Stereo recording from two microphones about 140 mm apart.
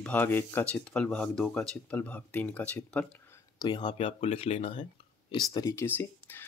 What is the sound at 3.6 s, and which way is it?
Speech, 30° left (ahead or behind).